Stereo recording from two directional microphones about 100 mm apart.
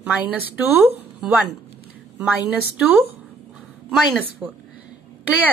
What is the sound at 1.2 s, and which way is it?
Speech, 5° right (ahead or behind).